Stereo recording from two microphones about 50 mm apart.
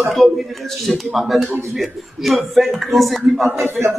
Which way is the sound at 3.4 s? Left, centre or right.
Right.